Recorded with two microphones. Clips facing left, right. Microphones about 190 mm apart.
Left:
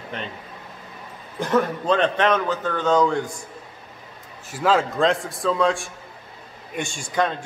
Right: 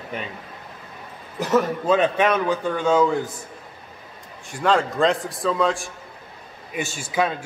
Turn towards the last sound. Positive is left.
turn(degrees=-5)  # may be behind; listen again after turning